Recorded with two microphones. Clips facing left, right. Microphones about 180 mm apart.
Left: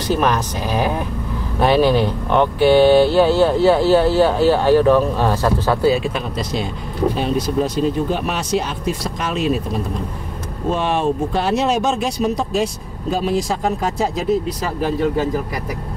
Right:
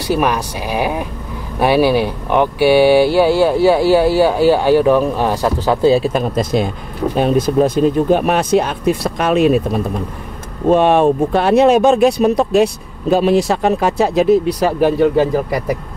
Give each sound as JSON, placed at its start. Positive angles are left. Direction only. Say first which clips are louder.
{"t": 0.0, "sound": "speech", "louder": "right 2 dB", "side_deg": -10}
{"t": 5.9, "sound": "speech", "louder": "right 8 dB", "side_deg": -35}
{"t": 10.7, "sound": "speech", "louder": "right 8 dB", "side_deg": -55}
{"t": 13.1, "sound": "speech", "louder": "right 7 dB", "side_deg": -70}